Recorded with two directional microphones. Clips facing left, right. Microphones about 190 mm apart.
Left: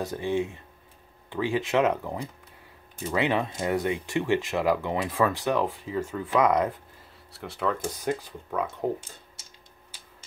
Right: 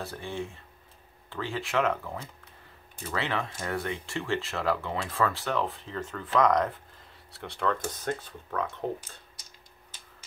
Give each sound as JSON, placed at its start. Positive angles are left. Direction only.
{"t": 0.0, "sound": "speech", "side_deg": 15}